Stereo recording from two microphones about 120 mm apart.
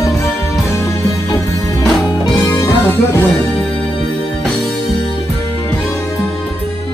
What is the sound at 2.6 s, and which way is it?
Music, 20° left (ahead or behind).